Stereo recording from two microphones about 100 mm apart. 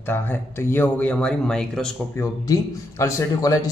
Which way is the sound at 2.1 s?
30° left (ahead or behind).